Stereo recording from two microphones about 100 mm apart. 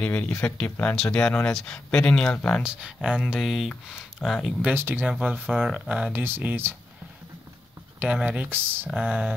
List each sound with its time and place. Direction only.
0.0 s speech: 15° left (ahead or behind)
2.6 s speech: 10° right (ahead or behind)
4.6 s speech: 20° right (ahead or behind)
5.0 s speech: centre (ahead or behind)
5.7 s speech: 10° right (ahead or behind)
6.2 s speech: 20° right (ahead or behind)
8.0 s speech: 10° right (ahead or behind)
8.5 s speech: 20° right (ahead or behind)